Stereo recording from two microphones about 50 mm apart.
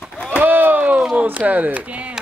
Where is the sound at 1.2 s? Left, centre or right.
Right.